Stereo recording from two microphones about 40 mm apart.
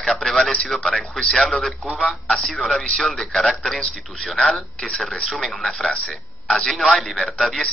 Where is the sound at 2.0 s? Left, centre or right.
Centre.